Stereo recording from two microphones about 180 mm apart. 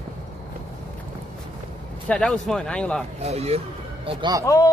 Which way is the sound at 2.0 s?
5° left (ahead or behind).